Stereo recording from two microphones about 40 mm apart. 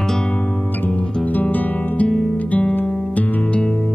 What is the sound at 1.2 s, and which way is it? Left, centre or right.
Guitar, left.